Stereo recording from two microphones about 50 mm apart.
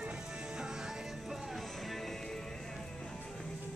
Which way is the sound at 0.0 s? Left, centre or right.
Centre.